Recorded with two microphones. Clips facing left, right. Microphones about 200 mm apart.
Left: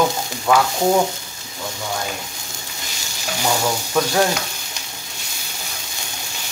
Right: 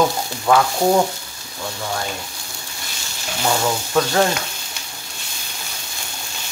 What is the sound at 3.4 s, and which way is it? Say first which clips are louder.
Stir: right 1 dB; 10° left (ahead or behind).